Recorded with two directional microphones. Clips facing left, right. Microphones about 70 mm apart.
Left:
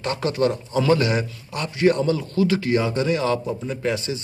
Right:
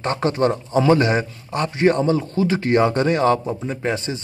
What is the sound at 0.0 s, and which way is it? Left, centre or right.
A man's voice, right.